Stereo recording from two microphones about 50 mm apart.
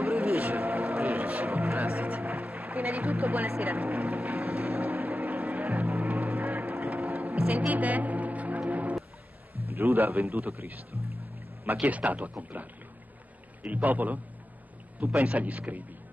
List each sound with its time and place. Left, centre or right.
0.0 s a sound: right
1.1 s music: right
3.6 s vehicle: right
4.9 s music: right
9.8 s a man's voice: right
11.8 s speech: right